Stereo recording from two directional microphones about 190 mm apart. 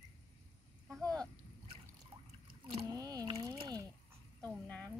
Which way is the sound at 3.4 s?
20° right (ahead or behind).